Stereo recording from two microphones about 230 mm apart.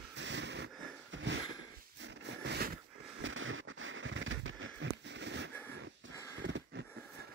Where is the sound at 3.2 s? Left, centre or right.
Right.